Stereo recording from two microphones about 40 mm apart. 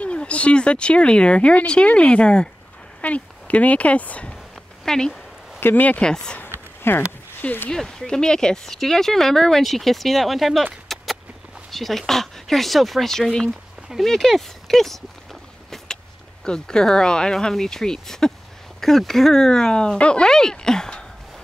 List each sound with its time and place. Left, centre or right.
0.0 s speech: left
3.0 s speech: left
4.8 s speech: centre
5.6 s speech: left
5.9 s speech: centre
6.8 s speech: left
7.7 s speech: centre
16.4 s speech: centre